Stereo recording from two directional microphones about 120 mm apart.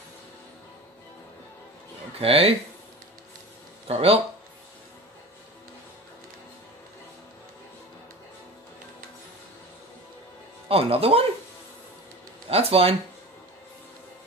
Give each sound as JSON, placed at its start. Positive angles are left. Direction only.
{"t": 2.1, "sound": "speech", "side_deg": -55}
{"t": 3.8, "sound": "speech", "side_deg": -55}
{"t": 10.7, "sound": "speech", "side_deg": -55}
{"t": 12.4, "sound": "speech", "side_deg": -55}